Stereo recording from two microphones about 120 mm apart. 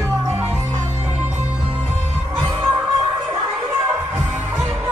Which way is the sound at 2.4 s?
20° right (ahead or behind).